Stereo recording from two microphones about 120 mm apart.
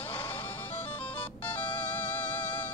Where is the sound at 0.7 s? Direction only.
50° left (ahead or behind).